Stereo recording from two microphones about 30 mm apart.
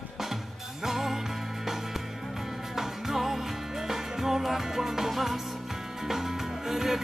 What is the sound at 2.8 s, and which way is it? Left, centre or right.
Music, centre.